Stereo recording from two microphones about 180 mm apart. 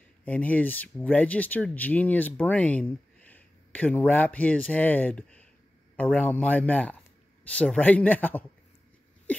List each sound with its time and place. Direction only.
0.2 s speech: 10° left (ahead or behind)